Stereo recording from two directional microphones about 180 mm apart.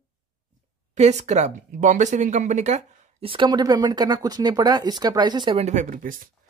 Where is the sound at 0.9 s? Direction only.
40° right (ahead or behind).